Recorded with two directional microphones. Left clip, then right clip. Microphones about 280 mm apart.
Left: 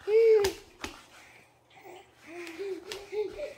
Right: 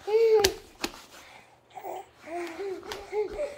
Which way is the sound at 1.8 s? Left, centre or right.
Right.